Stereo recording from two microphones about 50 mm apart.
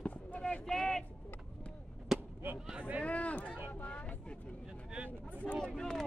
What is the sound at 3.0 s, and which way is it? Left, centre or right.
Speech, left.